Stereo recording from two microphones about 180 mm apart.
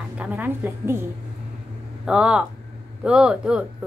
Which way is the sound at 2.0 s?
5° right (ahead or behind).